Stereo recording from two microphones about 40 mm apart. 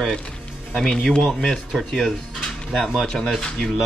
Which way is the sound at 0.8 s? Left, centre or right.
Centre.